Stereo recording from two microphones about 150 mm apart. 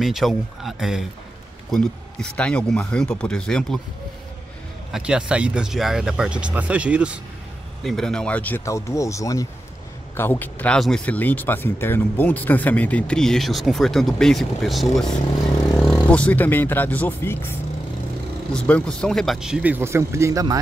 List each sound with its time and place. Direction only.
0.0 s speech: centre (ahead or behind)
4.9 s speech: 5° right (ahead or behind)
7.8 s speech: 5° left (ahead or behind)
18.5 s speech: 5° left (ahead or behind); by 20.5 s 20° right (ahead or behind)